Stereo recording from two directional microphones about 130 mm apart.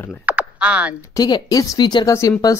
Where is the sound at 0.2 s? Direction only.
10° right (ahead or behind).